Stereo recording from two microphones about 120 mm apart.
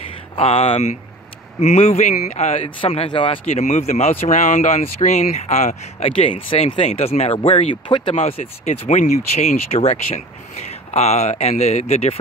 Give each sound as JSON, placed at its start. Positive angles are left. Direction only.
{"t": 0.4, "sound": "speech", "side_deg": 55}
{"t": 1.6, "sound": "speech", "side_deg": 75}
{"t": 2.8, "sound": "speech", "side_deg": 50}
{"t": 3.4, "sound": "speech", "side_deg": 70}
{"t": 4.3, "sound": "speech", "side_deg": 90}
{"t": 6.3, "sound": "speech", "side_deg": 45}
{"t": 7.9, "sound": "speech", "side_deg": 40}
{"t": 8.2, "sound": "speech", "side_deg": 65}